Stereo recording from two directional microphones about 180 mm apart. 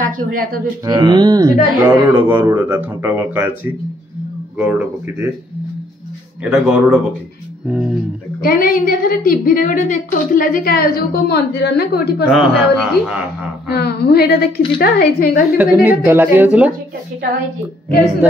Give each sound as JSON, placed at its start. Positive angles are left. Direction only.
{"t": 0.0, "sound": "speech", "side_deg": -50}
{"t": 0.8, "sound": "speech", "side_deg": -25}
{"t": 4.6, "sound": "speech", "side_deg": -5}
{"t": 6.4, "sound": "speech", "side_deg": -5}
{"t": 8.4, "sound": "a woman's voice", "side_deg": 55}
{"t": 12.3, "sound": "speech", "side_deg": 0}
{"t": 13.7, "sound": "a woman's voice", "side_deg": 60}
{"t": 15.5, "sound": "speech", "side_deg": -10}